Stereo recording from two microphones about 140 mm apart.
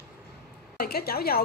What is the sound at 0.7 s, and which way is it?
Speech, 90° left.